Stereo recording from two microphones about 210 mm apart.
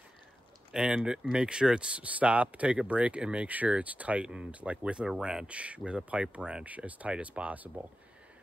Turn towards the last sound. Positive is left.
turn(degrees=-5)  # may be behind; listen again after turning